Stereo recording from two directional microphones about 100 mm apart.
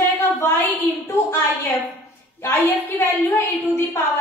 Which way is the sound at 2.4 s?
25° left (ahead or behind).